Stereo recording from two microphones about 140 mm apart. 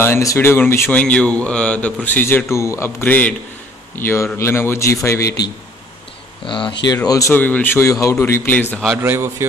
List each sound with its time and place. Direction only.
0.0 s a man's voice: 20° left (ahead or behind)
6.4 s speech: 35° left (ahead or behind)
7.1 s a man's voice: 25° left (ahead or behind)
7.3 s speech: 10° left (ahead or behind)
8.7 s a man's voice: centre (ahead or behind)
9.0 s a man's voice: 15° right (ahead or behind)